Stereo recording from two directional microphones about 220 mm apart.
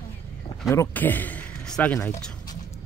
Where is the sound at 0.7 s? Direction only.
10° left (ahead or behind).